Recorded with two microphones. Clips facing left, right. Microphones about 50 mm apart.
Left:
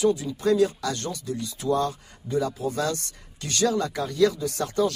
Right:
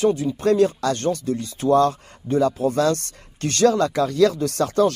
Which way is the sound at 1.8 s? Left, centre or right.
Right.